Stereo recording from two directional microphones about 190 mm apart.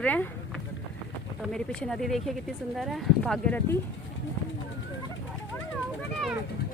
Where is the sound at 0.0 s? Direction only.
10° left (ahead or behind).